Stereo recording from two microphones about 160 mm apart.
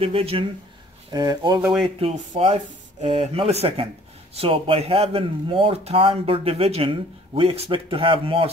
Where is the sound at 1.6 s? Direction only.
5° right (ahead or behind).